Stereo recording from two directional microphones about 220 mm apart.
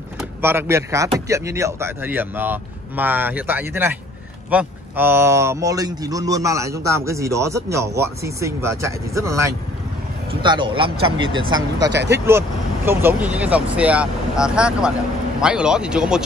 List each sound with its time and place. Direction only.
0.2 s a man's voice: 10° right (ahead or behind)
11.8 s speech: 50° right (ahead or behind)
12.1 s speech: 10° right (ahead or behind)